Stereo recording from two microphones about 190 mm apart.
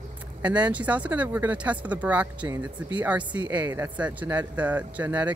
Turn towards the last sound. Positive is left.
turn(degrees=-10)  # may be behind; listen again after turning